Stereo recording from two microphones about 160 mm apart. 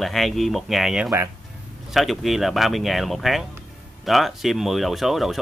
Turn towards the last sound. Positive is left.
turn(degrees=0)  # may be behind; listen again after turning